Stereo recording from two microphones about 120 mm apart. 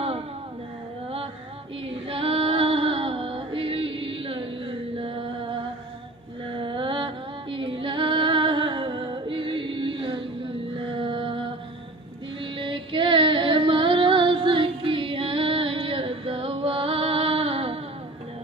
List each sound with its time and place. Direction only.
1.9 s music: 50° right (ahead or behind)
4.9 s mantra: 50° right (ahead or behind)
6.6 s music: 45° right (ahead or behind)
12.5 s music: 45° right (ahead or behind)